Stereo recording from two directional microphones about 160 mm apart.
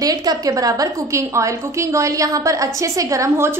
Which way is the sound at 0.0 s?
25° right (ahead or behind).